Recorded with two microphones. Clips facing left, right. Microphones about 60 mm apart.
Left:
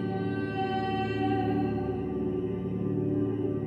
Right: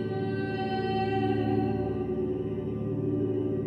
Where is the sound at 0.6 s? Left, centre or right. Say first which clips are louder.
Right 1 dB; centre.